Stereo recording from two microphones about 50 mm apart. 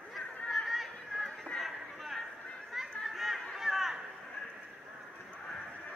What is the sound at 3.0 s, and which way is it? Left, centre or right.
Chatter, centre.